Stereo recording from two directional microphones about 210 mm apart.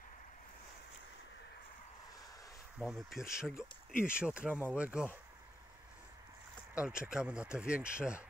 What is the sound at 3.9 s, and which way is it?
Speech, 40° left (ahead or behind).